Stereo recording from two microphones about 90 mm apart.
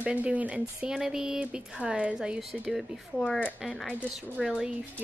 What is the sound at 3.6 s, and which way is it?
A woman's voice, centre (ahead or behind).